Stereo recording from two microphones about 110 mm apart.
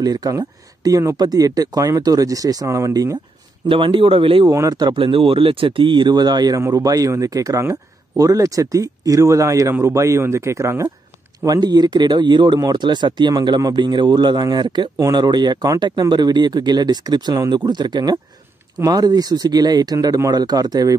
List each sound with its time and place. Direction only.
0.0 s speech: 35° right (ahead or behind)
3.6 s speech: 50° right (ahead or behind)
4.5 s speech: 30° right (ahead or behind)
4.9 s speech: 55° right (ahead or behind); by 20.9 s 35° right (ahead or behind)